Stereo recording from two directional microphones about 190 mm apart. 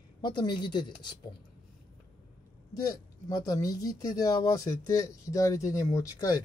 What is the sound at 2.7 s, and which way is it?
Speech, 20° left (ahead or behind).